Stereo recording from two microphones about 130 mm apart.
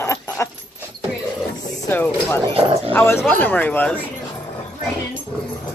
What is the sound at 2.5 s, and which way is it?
Speech, 45° right (ahead or behind).